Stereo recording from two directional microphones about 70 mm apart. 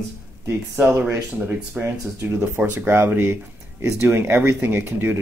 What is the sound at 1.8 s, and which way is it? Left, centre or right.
Speech, right.